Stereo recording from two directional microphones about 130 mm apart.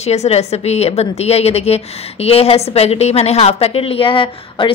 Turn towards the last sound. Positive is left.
turn(degrees=40)  # may be behind; listen again after turning